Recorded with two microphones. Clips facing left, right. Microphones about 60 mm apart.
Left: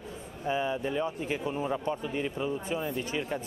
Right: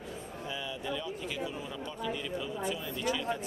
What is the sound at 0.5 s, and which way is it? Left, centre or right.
Speech, left.